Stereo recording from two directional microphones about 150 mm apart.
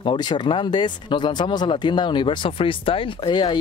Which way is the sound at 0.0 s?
40° left (ahead or behind).